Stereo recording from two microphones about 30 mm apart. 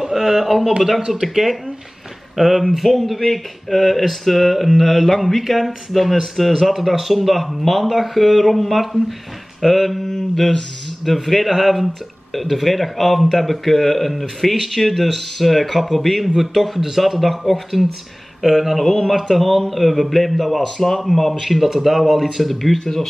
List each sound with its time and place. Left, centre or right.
0.0 s speech: centre
2.8 s speech: centre